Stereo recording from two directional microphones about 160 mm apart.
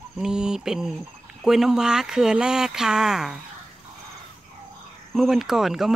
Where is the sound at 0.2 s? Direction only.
5° right (ahead or behind).